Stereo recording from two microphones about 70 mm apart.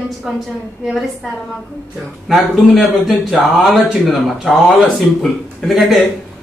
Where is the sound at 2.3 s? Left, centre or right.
Centre.